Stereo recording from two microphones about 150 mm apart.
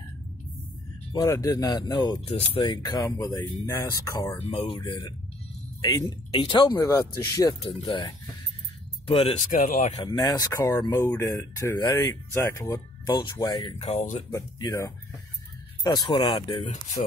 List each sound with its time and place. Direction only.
1.1 s speech: 25° left (ahead or behind)
4.4 s speech: 40° left (ahead or behind)
6.7 s speech: 20° left (ahead or behind)
7.6 s speech: 35° left (ahead or behind)
9.5 s speech: 60° left (ahead or behind)
9.9 s speech: 25° left (ahead or behind); by 14.2 s 50° left (ahead or behind)
14.3 s speech: 25° left (ahead or behind)